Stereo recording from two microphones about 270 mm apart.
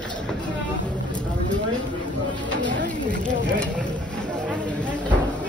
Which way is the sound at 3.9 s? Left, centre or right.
Centre.